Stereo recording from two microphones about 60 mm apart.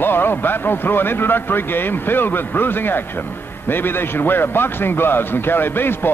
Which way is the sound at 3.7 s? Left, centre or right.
Left.